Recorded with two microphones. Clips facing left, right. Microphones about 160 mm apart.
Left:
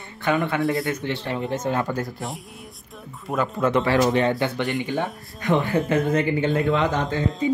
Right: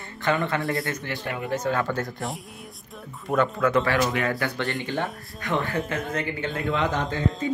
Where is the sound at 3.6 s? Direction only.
25° left (ahead or behind).